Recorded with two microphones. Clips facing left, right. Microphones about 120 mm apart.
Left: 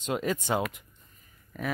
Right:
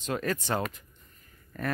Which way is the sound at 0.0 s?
20° left (ahead or behind).